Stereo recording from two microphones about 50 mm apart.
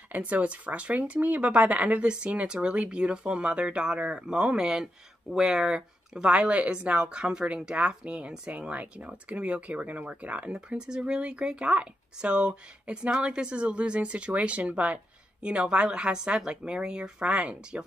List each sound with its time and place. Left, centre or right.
0.1 s speech: right
6.3 s speech: right